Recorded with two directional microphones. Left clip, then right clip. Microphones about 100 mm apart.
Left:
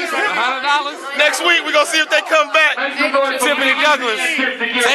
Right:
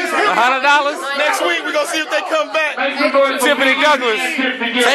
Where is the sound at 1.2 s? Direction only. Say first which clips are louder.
Left 4 dB; 15° left (ahead or behind).